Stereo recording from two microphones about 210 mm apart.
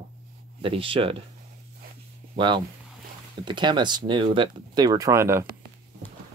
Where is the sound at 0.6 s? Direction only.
25° right (ahead or behind).